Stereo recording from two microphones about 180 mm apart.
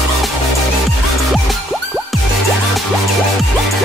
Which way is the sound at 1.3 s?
Centre (ahead or behind).